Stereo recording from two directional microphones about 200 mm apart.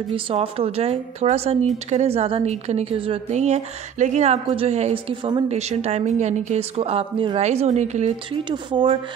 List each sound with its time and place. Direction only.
0.1 s a woman's voice: 30° right (ahead or behind)